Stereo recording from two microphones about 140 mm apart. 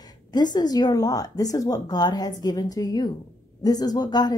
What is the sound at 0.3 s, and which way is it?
A woman's voice, 30° left (ahead or behind).